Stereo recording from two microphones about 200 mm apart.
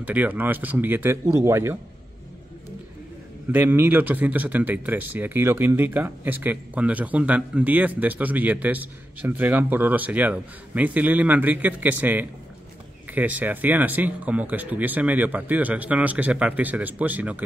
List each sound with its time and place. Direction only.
0.0 s speech: 10° right (ahead or behind)
3.5 s speech: 10° right (ahead or behind)